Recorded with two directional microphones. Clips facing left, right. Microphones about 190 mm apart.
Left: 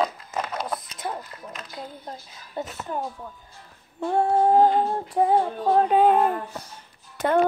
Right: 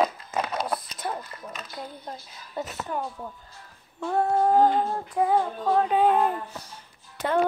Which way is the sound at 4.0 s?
30° left (ahead or behind).